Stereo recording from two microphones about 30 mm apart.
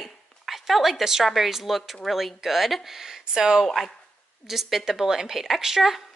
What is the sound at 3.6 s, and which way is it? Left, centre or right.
Speech, centre.